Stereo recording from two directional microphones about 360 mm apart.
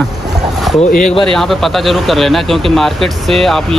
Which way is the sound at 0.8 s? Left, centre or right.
Centre.